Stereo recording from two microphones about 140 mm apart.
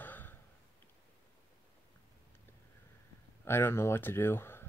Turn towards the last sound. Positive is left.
turn(degrees=15)  # may be behind; listen again after turning